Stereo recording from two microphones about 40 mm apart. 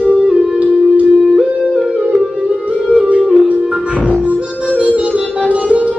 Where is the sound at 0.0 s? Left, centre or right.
Right.